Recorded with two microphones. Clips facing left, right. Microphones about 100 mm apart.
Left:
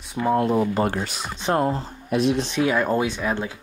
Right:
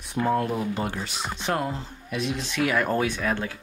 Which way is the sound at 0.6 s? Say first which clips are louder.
Left 6 dB; 45° left (ahead or behind).